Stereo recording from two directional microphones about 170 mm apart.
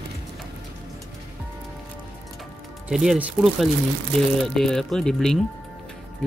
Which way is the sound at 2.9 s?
5° right (ahead or behind).